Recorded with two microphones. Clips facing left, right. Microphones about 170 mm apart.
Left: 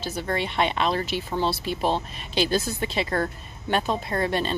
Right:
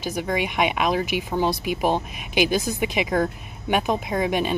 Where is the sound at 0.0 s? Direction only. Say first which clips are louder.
Right 3 dB; 15° right (ahead or behind).